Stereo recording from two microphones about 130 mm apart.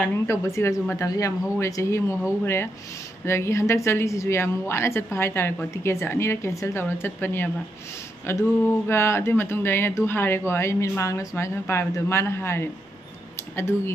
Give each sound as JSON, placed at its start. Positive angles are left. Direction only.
{"t": 0.0, "sound": "speech", "side_deg": 20}